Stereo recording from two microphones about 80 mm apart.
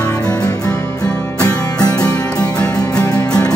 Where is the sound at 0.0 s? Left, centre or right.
Left.